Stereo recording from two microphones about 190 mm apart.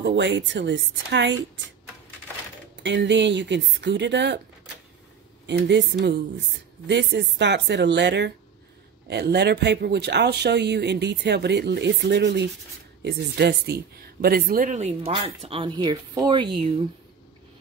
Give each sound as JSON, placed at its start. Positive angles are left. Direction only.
{"t": 0.0, "sound": "speech", "side_deg": -70}
{"t": 2.7, "sound": "speech", "side_deg": -70}
{"t": 5.5, "sound": "speech", "side_deg": -65}